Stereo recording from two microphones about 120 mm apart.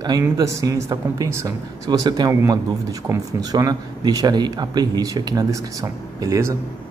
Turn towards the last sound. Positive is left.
turn(degrees=-25)  # may be behind; listen again after turning